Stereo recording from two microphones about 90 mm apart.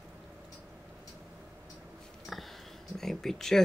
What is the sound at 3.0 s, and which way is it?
Speech, 5° left (ahead or behind).